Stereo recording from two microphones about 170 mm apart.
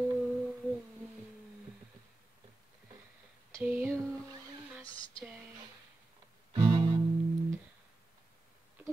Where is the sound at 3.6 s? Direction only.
10° right (ahead or behind).